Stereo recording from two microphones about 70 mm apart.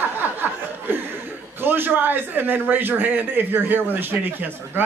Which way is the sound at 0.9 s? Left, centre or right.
Right.